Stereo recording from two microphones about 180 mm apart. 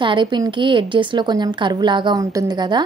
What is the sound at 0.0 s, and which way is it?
A woman's voice, 25° right (ahead or behind).